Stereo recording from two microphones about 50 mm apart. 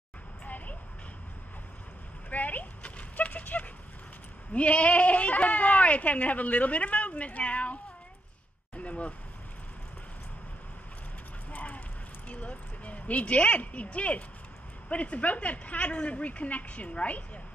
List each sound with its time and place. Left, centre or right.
2.2 s horse: left
4.6 s speech: left
8.7 s a sound: left
11.5 s clip-clop: left
12.3 s speech: left